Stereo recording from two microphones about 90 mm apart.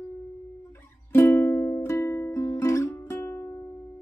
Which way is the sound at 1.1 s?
25° left (ahead or behind).